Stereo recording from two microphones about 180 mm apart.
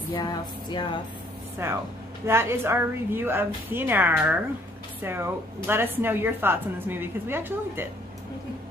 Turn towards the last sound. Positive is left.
turn(degrees=-10)  # may be behind; listen again after turning